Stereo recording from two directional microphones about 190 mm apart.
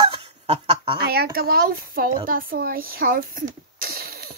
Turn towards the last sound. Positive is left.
turn(degrees=-55)  # may be behind; listen again after turning